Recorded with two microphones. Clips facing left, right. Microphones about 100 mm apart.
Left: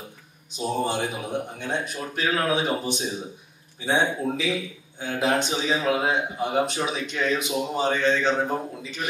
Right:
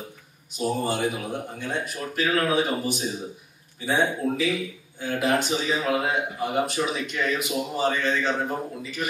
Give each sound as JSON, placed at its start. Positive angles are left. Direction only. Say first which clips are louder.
{"t": 0.5, "sound": "a man's voice", "louder": "even", "side_deg": 20}